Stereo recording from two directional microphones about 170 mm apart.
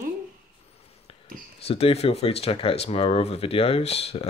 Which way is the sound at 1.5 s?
35° left (ahead or behind).